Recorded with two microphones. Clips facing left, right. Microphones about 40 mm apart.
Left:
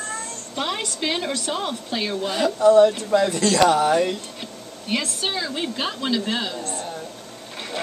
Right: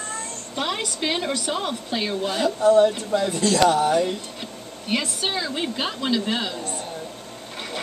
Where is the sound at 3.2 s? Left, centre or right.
Left.